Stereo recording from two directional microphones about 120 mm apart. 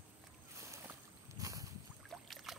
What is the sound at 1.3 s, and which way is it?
Boat, 30° right (ahead or behind).